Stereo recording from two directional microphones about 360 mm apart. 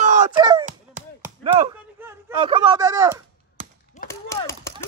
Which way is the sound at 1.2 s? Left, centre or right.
Centre.